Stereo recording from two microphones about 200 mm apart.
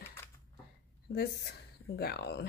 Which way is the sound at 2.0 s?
50° left (ahead or behind).